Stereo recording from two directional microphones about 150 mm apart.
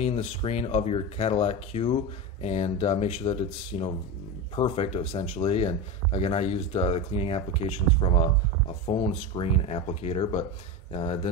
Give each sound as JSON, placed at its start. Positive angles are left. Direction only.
{"t": 0.0, "sound": "speech", "side_deg": 40}